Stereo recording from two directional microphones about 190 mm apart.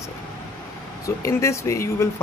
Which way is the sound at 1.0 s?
15° left (ahead or behind).